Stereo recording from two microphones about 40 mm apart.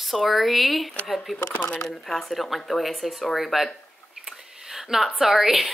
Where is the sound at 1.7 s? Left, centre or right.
Centre.